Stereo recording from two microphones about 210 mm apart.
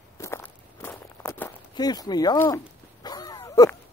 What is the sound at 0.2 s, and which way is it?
Walk, 15° left (ahead or behind).